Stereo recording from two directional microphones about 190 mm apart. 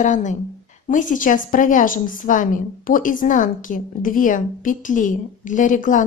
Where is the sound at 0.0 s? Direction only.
40° left (ahead or behind).